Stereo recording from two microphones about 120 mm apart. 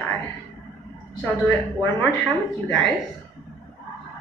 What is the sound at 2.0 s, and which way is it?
Speech, 15° left (ahead or behind).